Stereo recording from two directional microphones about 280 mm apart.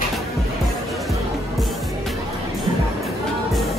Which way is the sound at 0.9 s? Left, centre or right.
Centre.